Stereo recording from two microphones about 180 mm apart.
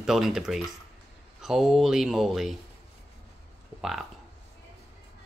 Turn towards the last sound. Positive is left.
turn(degrees=0)  # may be behind; listen again after turning